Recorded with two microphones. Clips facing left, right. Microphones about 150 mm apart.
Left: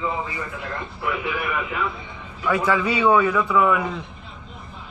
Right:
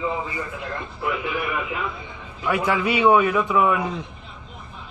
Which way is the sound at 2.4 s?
15° right (ahead or behind).